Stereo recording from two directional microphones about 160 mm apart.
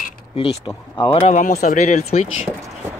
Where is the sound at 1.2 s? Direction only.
50° left (ahead or behind).